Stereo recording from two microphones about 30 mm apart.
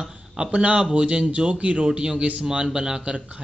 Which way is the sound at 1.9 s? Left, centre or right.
Right.